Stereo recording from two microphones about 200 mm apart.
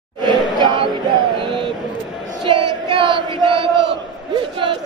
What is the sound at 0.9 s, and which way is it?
Music, 20° right (ahead or behind).